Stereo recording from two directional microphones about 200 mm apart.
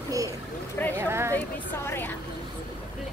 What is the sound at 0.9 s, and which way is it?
Speech, 10° right (ahead or behind).